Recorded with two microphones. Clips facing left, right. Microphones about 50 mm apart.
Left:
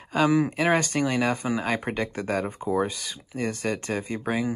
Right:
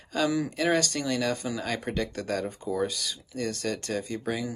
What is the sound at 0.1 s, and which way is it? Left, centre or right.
Speech, left.